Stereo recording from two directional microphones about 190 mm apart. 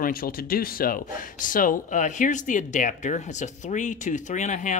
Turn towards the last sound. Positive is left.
turn(degrees=40)  # may be behind; listen again after turning